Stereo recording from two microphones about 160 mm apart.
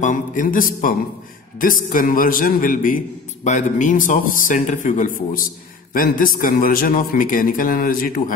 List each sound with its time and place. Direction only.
0.0 s a man's voice: 55° left (ahead or behind)
3.4 s a man's voice: 50° left (ahead or behind)